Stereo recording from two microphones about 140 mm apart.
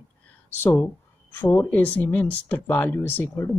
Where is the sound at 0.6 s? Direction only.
15° left (ahead or behind).